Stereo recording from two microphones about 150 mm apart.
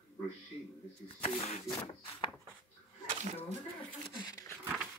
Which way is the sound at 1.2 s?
45° left (ahead or behind).